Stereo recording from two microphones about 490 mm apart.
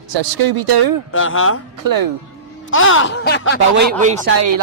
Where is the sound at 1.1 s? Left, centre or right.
Left.